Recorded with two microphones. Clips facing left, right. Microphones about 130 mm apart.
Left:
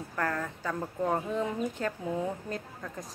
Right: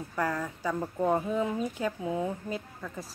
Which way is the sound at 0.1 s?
10° right (ahead or behind).